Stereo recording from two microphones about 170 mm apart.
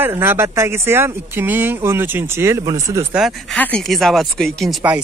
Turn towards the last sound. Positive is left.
turn(degrees=0)  # may be behind; listen again after turning